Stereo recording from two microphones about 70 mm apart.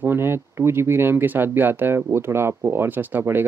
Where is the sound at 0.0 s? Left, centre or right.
Right.